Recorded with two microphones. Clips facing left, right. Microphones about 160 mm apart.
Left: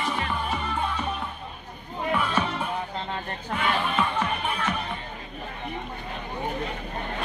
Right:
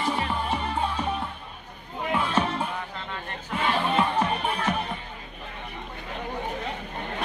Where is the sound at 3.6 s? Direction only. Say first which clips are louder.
Right 2 dB; 30° right (ahead or behind).